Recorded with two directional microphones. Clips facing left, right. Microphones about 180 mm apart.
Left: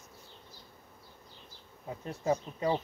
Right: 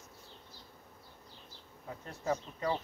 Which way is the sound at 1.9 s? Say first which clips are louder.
Left 4 dB; 20° left (ahead or behind).